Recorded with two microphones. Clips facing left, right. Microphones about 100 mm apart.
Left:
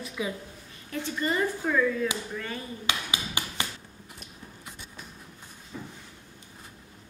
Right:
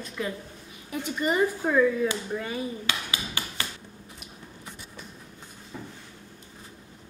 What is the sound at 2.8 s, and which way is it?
Hammer, 20° left (ahead or behind).